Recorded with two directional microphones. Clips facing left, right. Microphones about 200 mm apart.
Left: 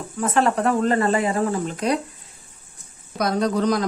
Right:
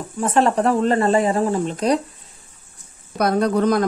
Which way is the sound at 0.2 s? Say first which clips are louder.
Right 2 dB; 30° right (ahead or behind).